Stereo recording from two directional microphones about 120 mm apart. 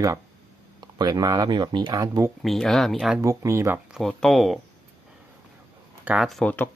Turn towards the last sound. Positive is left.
turn(degrees=10)  # may be behind; listen again after turning